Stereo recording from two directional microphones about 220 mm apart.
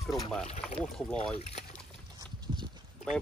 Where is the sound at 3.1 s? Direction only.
5° left (ahead or behind).